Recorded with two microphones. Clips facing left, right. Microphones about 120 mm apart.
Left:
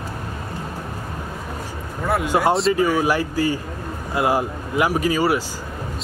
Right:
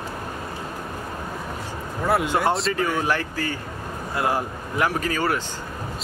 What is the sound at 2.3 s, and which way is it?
Speech, 10° left (ahead or behind).